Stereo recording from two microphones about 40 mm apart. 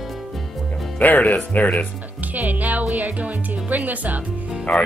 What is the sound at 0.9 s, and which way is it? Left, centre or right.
Speech, left.